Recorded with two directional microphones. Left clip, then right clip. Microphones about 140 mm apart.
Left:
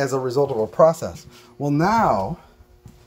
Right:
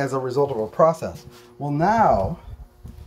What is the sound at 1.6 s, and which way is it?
Speech, 40° left (ahead or behind).